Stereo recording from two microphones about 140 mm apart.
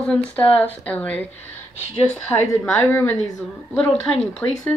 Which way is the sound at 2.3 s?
15° left (ahead or behind).